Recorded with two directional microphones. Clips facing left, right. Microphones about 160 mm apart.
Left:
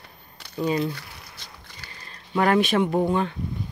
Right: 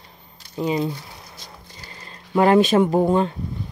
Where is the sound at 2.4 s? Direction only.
25° right (ahead or behind).